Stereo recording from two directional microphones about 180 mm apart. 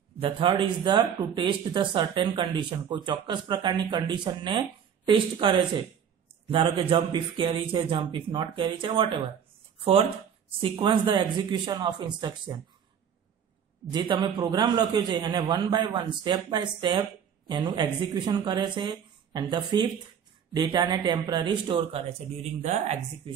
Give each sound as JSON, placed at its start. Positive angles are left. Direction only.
{"t": 0.2, "sound": "a man's voice", "side_deg": -30}
{"t": 10.6, "sound": "a man's voice", "side_deg": -30}
{"t": 13.9, "sound": "a man's voice", "side_deg": -25}